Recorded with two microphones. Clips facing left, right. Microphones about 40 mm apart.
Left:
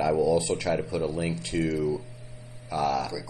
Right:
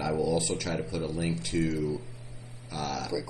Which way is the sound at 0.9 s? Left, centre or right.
Left.